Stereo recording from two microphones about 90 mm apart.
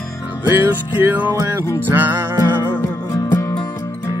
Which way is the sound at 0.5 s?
20° right (ahead or behind).